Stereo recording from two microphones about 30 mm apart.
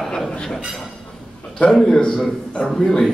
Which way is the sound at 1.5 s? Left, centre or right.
Left.